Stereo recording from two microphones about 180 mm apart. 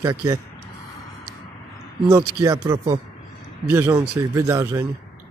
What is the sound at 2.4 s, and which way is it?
A man's voice, 15° right (ahead or behind).